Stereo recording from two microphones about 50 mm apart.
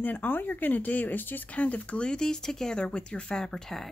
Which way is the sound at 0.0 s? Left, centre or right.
Left.